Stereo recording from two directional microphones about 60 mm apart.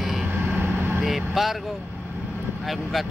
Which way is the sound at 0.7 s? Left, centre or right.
Right.